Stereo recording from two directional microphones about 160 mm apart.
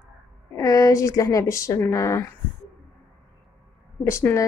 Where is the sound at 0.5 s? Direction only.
20° left (ahead or behind).